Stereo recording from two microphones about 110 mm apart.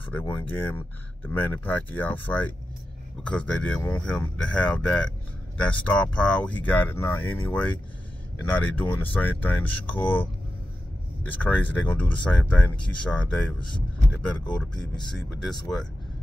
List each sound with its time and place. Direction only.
0.3 s speech: 15° left (ahead or behind)
14.6 s speech: 5° left (ahead or behind)